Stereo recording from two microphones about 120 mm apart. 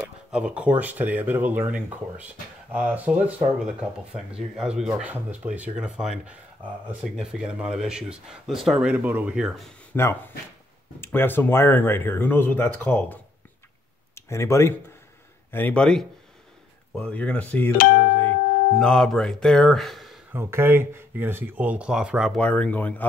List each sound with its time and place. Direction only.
0.3 s speech: 10° right (ahead or behind)
9.9 s speech: 20° left (ahead or behind)
15.5 s speech: 10° left (ahead or behind)
20.3 s speech: 20° right (ahead or behind)
22.3 s speech: 10° left (ahead or behind)